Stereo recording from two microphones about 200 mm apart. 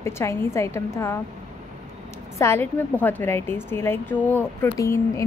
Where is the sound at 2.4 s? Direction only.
10° left (ahead or behind).